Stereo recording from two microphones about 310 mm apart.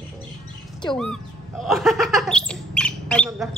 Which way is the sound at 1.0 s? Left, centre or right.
Centre.